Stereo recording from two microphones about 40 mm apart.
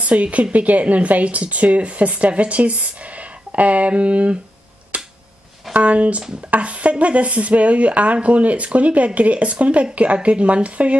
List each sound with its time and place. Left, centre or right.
0.0 s speech: right
4.9 s finger snapping: right
5.7 s speech: right